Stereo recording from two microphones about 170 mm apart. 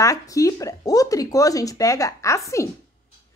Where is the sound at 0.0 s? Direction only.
20° left (ahead or behind).